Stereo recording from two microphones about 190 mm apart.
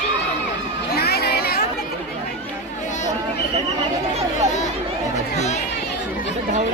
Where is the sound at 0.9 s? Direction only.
55° left (ahead or behind).